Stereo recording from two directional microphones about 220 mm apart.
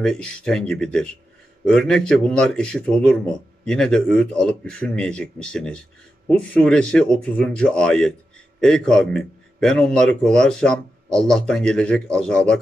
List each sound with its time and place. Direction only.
0.0 s a man's voice: 5° left (ahead or behind)